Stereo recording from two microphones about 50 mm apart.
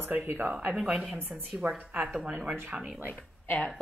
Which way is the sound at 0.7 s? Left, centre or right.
Centre.